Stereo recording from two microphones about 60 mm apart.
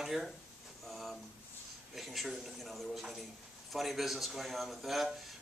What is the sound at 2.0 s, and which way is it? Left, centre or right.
A man's voice, centre.